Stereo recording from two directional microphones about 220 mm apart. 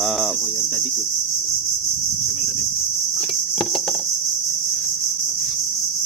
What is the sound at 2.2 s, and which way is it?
Cricket, centre (ahead or behind).